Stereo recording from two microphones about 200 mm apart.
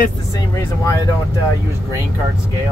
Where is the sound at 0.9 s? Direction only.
15° left (ahead or behind).